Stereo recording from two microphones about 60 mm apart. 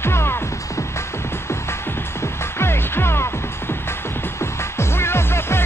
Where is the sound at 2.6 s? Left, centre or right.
Left.